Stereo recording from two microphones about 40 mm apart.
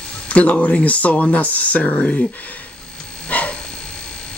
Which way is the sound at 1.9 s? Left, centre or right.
Left.